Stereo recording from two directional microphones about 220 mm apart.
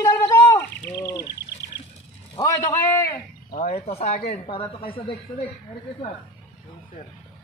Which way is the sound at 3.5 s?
30° left (ahead or behind).